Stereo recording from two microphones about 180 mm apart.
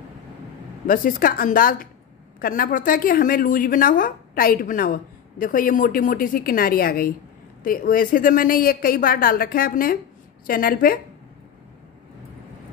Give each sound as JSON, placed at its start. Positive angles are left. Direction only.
{"t": 0.8, "sound": "a woman's voice", "side_deg": 50}